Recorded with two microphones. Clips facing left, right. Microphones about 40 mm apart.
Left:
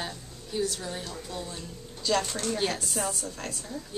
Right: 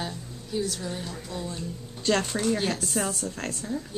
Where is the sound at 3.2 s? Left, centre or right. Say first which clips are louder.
Right 4 dB; right.